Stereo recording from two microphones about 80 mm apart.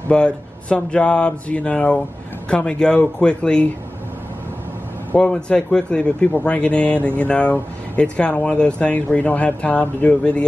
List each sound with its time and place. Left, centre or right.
0.1 s speech: centre
5.1 s speech: centre